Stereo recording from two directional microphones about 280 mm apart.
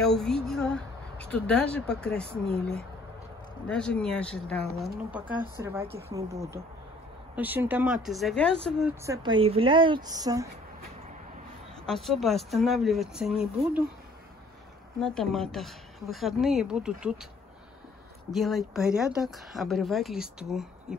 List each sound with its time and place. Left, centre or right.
0.0 s speech: centre
3.6 s a woman's voice: centre
6.0 s speech: right
7.3 s speech: centre
9.0 s a woman's voice: centre
11.8 s speech: centre
15.0 s speech: centre
18.3 s speech: centre